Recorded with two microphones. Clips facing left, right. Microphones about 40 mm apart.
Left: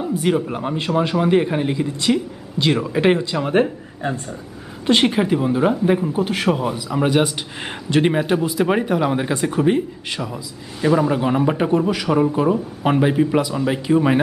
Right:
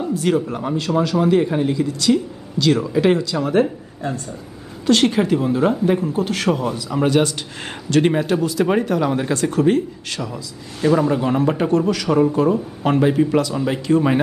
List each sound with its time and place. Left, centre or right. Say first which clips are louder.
0.1 s speech: even; centre
0.7 s speech: right 1 dB; left
4.8 s speech: right 1 dB; centre